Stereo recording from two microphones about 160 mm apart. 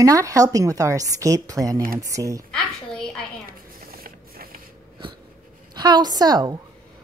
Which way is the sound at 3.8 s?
70° right (ahead or behind).